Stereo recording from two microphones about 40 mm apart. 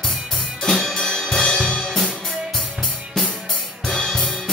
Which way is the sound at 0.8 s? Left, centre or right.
Centre.